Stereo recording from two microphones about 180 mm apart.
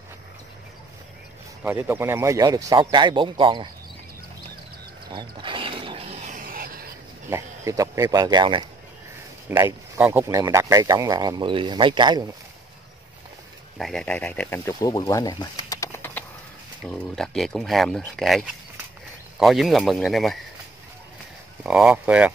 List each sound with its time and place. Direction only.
1.6 s speech: 10° right (ahead or behind); by 3.6 s 30° right (ahead or behind)
5.1 s wild animals: 25° right (ahead or behind); by 6.9 s 55° right (ahead or behind)
7.2 s speech: 15° right (ahead or behind)
9.9 s speech: 10° right (ahead or behind)
13.7 s speech: centre (ahead or behind)
16.9 s speech: 5° left (ahead or behind)
21.6 s speech: 5° right (ahead or behind)